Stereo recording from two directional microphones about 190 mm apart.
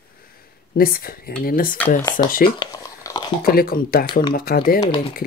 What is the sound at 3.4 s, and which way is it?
Speech, 50° left (ahead or behind).